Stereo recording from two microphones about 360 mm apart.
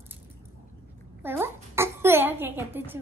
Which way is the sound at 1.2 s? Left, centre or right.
Centre.